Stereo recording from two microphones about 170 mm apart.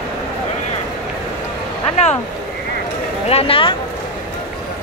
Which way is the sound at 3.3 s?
35° left (ahead or behind).